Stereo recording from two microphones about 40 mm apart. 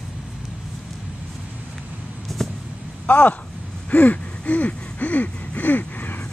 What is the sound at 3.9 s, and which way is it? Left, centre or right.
Gasp, left.